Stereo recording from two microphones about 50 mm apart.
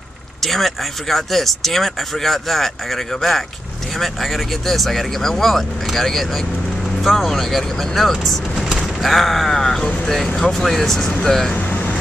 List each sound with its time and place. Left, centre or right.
0.4 s speech: centre
11.5 s vehicle: left